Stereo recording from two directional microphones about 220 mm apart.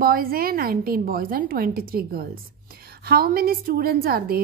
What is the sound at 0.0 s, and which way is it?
A woman's voice, 40° right (ahead or behind).